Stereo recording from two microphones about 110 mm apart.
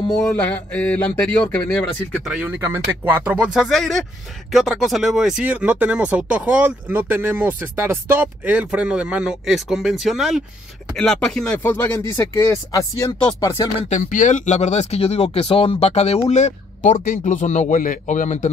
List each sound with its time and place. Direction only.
0.2 s speech: 15° left (ahead or behind)
2.4 s speech: 20° right (ahead or behind); by 10.4 s 5° right (ahead or behind)
11.0 s speech: 10° left (ahead or behind)
11.6 s speech: 20° left (ahead or behind)
13.8 s speech: 90° left
16.3 s speech: 90° left